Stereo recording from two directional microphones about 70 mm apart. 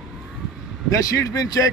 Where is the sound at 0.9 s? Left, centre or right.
Left.